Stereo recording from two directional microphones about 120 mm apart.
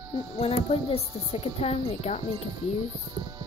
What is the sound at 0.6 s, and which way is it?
A woman's voice, 55° left (ahead or behind).